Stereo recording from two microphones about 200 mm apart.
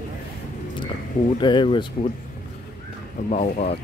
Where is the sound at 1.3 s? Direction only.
25° left (ahead or behind).